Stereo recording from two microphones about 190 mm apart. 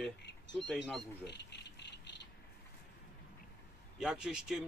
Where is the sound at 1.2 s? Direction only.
65° left (ahead or behind).